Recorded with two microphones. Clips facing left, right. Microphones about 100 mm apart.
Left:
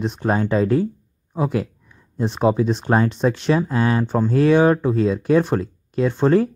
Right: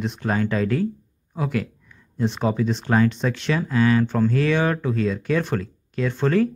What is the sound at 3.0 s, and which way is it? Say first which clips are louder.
Speech: left 3 dB; 40° left (ahead or behind).